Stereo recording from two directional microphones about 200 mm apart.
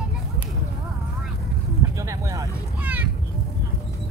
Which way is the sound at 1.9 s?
15° right (ahead or behind).